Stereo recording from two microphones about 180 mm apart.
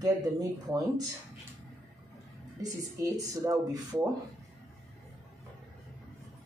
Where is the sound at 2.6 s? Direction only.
20° right (ahead or behind).